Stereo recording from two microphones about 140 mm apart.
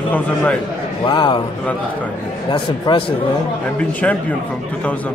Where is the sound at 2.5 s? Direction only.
35° left (ahead or behind).